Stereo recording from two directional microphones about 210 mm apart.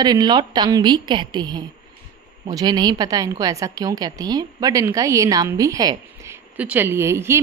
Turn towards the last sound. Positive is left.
turn(degrees=-10)  # may be behind; listen again after turning